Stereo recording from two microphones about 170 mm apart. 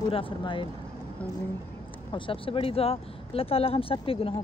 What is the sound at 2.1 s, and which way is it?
Speech, 30° left (ahead or behind).